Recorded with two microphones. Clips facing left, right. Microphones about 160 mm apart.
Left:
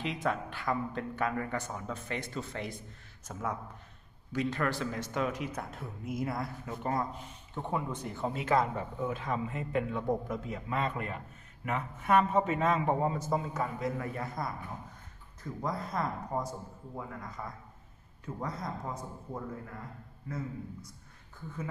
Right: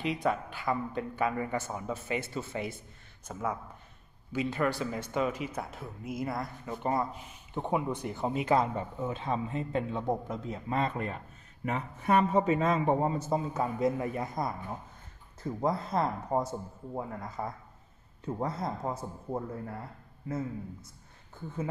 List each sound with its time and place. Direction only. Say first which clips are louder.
0.0 s speech: right 3 dB; centre (ahead or behind); by 8.6 s 15° right (ahead or behind)
9.1 s a man's voice: right 2 dB; 25° right (ahead or behind)